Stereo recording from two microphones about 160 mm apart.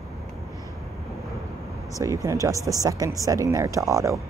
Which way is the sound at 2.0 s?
20° right (ahead or behind).